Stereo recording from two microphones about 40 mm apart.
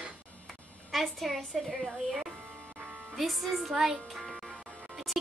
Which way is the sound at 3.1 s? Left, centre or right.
Centre.